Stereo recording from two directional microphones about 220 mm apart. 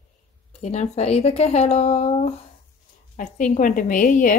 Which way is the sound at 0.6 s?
30° left (ahead or behind).